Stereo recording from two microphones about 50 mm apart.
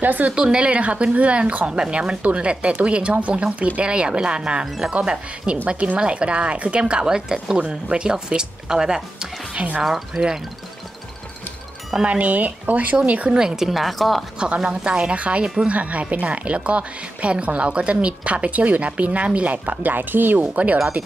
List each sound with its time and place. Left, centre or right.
0.0 s speech: right
0.3 s a woman's voice: centre
3.8 s a woman's voice: centre
12.0 s a woman's voice: right
13.3 s speech: centre
13.7 s speech: centre
14.7 s a woman's voice: right
20.5 s a woman's voice: right